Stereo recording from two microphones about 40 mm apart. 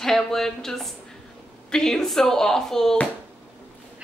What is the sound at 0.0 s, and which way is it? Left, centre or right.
A woman's voice, centre.